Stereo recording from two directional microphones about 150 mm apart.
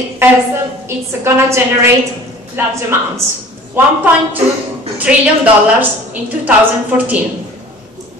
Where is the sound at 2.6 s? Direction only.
15° right (ahead or behind).